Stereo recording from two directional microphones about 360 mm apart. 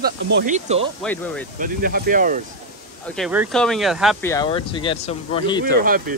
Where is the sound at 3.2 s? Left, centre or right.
Centre.